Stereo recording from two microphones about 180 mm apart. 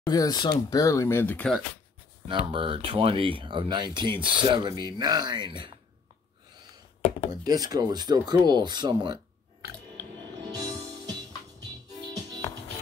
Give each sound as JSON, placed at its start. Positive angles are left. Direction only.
{"t": 0.0, "sound": "speech", "side_deg": 20}
{"t": 2.2, "sound": "speech", "side_deg": -30}
{"t": 7.0, "sound": "speech", "side_deg": 35}
{"t": 7.4, "sound": "speech", "side_deg": -20}
{"t": 10.5, "sound": "music", "side_deg": -20}